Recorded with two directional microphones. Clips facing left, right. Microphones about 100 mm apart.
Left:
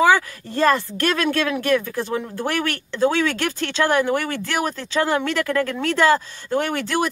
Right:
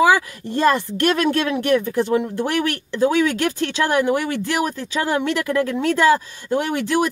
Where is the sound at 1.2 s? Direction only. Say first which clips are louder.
Right 2 dB; 25° right (ahead or behind).